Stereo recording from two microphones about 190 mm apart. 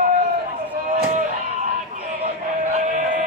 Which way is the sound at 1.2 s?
40° right (ahead or behind).